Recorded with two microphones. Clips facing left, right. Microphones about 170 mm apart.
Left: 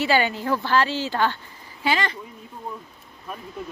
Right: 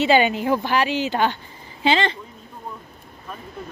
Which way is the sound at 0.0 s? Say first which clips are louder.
Right 4 dB; 20° right (ahead or behind).